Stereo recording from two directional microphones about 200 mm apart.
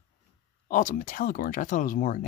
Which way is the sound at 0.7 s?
40° left (ahead or behind).